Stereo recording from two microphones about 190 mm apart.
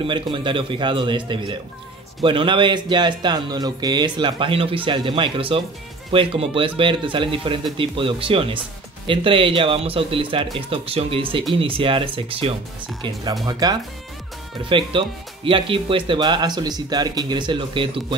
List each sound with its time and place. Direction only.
0.0 s speech: 25° right (ahead or behind)